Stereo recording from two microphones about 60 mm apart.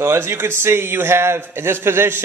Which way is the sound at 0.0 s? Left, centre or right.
Right.